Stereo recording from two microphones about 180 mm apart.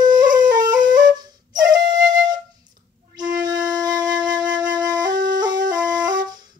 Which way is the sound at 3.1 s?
20° right (ahead or behind).